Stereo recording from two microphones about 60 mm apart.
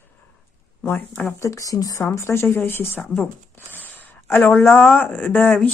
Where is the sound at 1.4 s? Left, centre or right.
Left.